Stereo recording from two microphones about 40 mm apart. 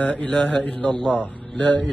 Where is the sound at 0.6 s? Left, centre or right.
Left.